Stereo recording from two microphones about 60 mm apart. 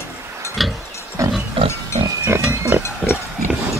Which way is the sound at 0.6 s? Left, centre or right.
Centre.